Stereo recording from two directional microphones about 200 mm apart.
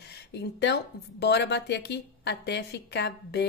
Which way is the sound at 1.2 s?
60° left (ahead or behind).